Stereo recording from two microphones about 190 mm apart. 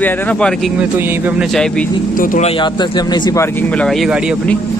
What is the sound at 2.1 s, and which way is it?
Speech, 45° left (ahead or behind).